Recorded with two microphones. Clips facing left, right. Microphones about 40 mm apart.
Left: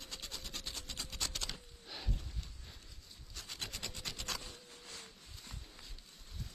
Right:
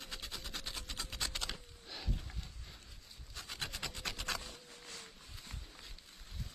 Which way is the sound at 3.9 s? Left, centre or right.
Right.